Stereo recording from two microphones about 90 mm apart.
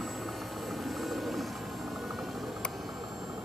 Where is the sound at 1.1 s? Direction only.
Centre (ahead or behind).